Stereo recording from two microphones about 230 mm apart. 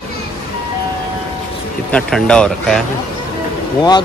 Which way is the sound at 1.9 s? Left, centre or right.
Centre.